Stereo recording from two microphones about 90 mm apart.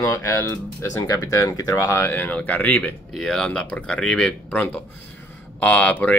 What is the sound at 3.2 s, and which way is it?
Speech, 5° left (ahead or behind).